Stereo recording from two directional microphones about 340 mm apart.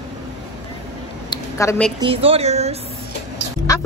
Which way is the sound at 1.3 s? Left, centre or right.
Centre.